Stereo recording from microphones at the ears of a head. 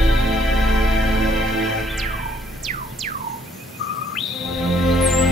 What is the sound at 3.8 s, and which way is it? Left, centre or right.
Bird, left.